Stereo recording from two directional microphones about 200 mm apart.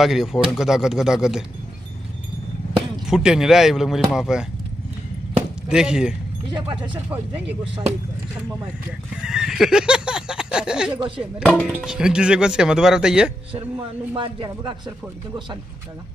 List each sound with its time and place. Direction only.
0.0 s speech: centre (ahead or behind)
3.1 s speech: 5° right (ahead or behind)
5.7 s speech: 5° right (ahead or behind)
6.5 s a man's voice: 25° right (ahead or behind)
9.1 s neigh: 5° right (ahead or behind)
11.0 s a man's voice: 25° right (ahead or behind)
11.5 s speech: 5° right (ahead or behind)
13.5 s a man's voice: 25° right (ahead or behind)